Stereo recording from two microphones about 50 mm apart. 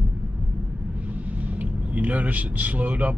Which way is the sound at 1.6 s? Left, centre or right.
Right.